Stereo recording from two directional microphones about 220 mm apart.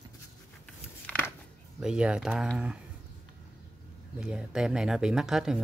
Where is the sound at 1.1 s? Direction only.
10° left (ahead or behind).